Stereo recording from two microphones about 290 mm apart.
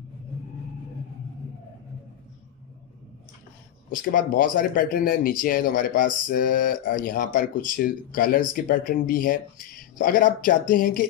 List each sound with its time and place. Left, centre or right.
3.9 s speech: left